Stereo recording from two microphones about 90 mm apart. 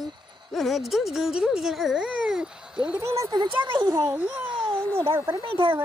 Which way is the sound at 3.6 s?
60° right (ahead or behind).